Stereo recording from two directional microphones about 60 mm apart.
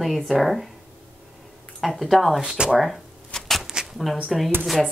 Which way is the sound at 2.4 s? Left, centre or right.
Centre.